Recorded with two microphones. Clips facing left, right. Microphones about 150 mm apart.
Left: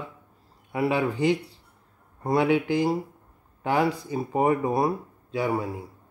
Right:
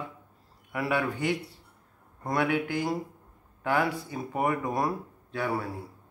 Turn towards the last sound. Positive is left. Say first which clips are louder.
# left 4 dB
turn(degrees=15)  # may be behind; listen again after turning